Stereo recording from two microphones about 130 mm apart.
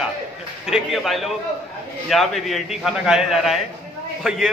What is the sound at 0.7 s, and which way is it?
A man's voice, centre (ahead or behind).